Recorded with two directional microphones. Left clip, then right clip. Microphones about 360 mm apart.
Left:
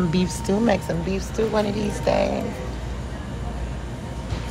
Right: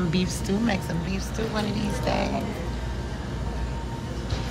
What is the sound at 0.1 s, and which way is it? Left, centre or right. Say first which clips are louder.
A woman's voice: left 4 dB; centre.